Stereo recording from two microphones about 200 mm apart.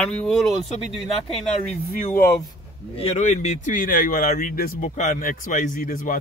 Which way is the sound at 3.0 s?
35° left (ahead or behind).